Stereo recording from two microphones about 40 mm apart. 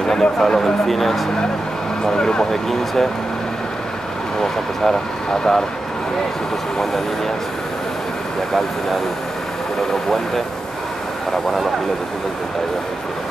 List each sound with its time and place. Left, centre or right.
0.0 s speech: centre
2.0 s speech: centre
4.4 s speech: centre